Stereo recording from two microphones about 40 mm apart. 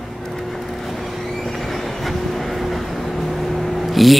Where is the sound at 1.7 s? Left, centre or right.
Centre.